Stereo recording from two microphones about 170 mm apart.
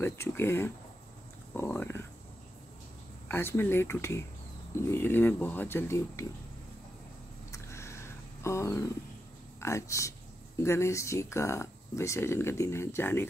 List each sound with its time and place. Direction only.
0.0 s speech: 15° left (ahead or behind)
3.3 s speech: 15° left (ahead or behind)
7.5 s a sound: 15° left (ahead or behind)
9.6 s speech: 15° left (ahead or behind)